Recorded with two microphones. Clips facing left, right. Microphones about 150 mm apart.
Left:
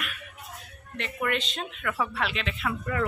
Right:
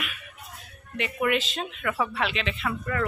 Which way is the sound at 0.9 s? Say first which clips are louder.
Right 4 dB; 5° right (ahead or behind).